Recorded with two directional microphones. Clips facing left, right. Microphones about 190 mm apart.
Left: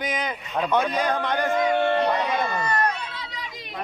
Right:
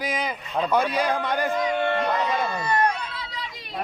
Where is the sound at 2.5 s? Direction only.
10° right (ahead or behind).